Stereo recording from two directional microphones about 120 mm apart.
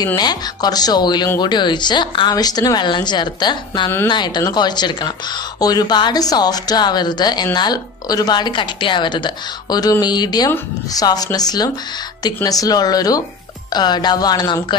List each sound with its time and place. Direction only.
0.0 s a woman's voice: 35° left (ahead or behind)